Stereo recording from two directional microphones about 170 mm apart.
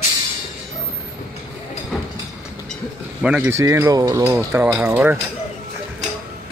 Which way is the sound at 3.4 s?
15° right (ahead or behind).